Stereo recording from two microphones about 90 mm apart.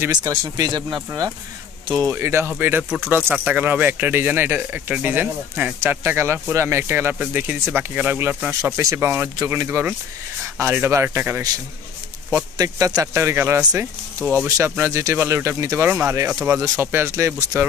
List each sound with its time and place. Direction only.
0.1 s speech: 45° right (ahead or behind)
2.1 s speech: 30° right (ahead or behind)
12.3 s speech: 40° right (ahead or behind)
15.8 s speech: 25° right (ahead or behind)